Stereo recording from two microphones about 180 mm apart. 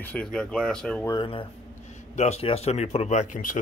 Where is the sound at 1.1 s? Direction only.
30° left (ahead or behind).